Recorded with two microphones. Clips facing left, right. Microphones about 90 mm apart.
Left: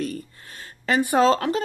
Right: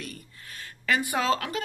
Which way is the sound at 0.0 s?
35° left (ahead or behind).